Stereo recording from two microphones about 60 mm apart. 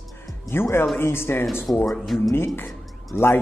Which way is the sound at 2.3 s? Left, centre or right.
Left.